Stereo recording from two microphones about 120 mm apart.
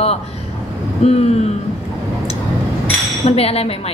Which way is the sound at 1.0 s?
60° left (ahead or behind).